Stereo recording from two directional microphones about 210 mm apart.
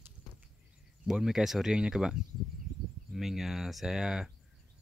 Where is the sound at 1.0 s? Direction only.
Centre (ahead or behind).